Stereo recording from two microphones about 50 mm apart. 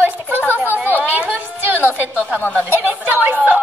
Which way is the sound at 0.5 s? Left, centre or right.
Right.